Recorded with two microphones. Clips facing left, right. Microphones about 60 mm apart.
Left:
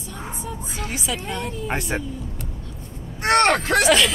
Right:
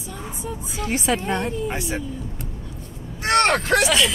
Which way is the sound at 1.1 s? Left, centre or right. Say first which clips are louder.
Right 7 dB; right.